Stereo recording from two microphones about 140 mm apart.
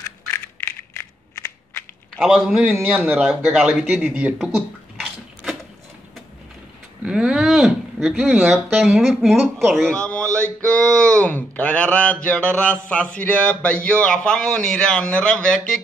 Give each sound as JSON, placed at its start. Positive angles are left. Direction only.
{"t": 0.3, "sound": "crushing", "side_deg": 15}
{"t": 2.1, "sound": "a man's voice", "side_deg": 0}
{"t": 7.1, "sound": "speech", "side_deg": -5}
{"t": 10.2, "sound": "mantra", "side_deg": -20}
{"t": 10.7, "sound": "a man's voice", "side_deg": 5}